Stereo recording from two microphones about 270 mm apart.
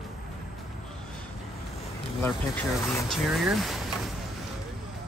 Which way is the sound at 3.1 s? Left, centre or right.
Centre.